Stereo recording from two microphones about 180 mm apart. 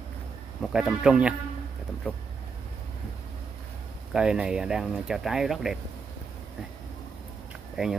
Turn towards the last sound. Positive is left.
turn(degrees=0)  # may be behind; listen again after turning